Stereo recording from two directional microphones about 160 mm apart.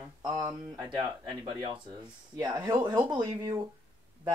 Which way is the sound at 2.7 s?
25° right (ahead or behind).